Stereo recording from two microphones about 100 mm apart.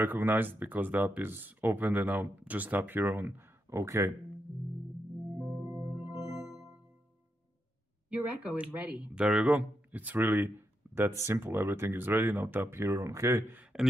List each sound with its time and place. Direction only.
0.0 s speech: 20° right (ahead or behind)
5.4 s music: 25° right (ahead or behind)
8.1 s speech: 15° right (ahead or behind)